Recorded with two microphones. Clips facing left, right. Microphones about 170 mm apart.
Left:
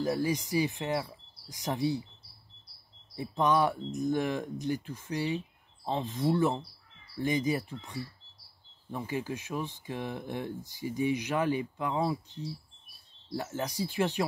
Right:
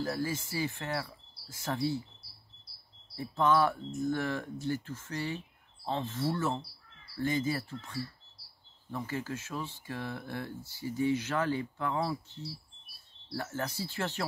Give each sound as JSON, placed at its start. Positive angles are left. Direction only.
{"t": 0.0, "sound": "speech", "side_deg": 15}
{"t": 3.2, "sound": "speech", "side_deg": 15}